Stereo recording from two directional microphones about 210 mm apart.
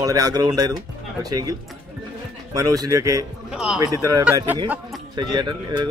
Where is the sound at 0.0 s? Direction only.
20° right (ahead or behind).